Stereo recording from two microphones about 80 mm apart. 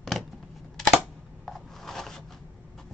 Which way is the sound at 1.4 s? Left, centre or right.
Centre.